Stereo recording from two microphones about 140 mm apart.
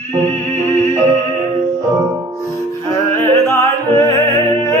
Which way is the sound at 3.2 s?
20° left (ahead or behind).